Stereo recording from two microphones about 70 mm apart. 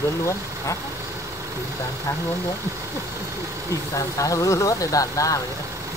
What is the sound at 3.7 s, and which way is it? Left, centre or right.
Speech, left.